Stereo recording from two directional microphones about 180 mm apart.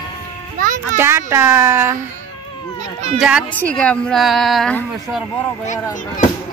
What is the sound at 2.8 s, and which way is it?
Speech, 40° right (ahead or behind).